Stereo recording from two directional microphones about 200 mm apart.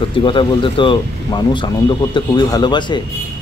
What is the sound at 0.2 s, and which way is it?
Speech, 25° left (ahead or behind).